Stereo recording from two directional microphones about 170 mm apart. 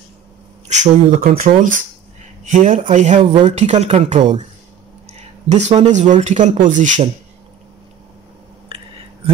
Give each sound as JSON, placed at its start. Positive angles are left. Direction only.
{"t": 0.7, "sound": "speech", "side_deg": -50}
{"t": 3.3, "sound": "speech", "side_deg": -30}
{"t": 5.5, "sound": "speech", "side_deg": -40}